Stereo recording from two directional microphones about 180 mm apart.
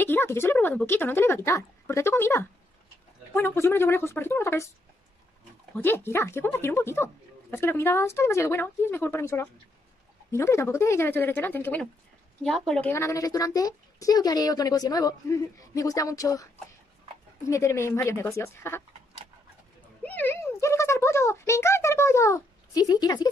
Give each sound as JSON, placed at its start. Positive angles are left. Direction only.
{"t": 0.0, "sound": "speech", "side_deg": 10}
{"t": 5.8, "sound": "a woman's voice", "side_deg": 10}
{"t": 12.9, "sound": "a woman's voice", "side_deg": 15}
{"t": 17.5, "sound": "speech", "side_deg": 15}
{"t": 20.0, "sound": "a sound", "side_deg": 10}